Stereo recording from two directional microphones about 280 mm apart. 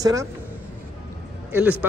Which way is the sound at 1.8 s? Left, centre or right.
Centre.